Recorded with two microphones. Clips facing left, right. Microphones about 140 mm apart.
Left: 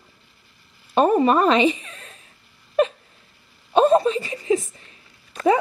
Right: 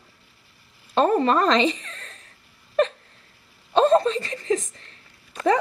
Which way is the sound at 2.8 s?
10° left (ahead or behind).